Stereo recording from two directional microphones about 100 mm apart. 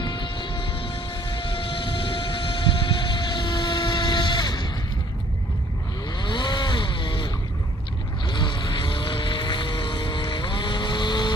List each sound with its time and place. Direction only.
0.0 s vehicle: 55° left (ahead or behind)
2.8 s vehicle: 50° left (ahead or behind)
6.2 s vehicle: 50° left (ahead or behind)
8.3 s vehicle: 50° left (ahead or behind)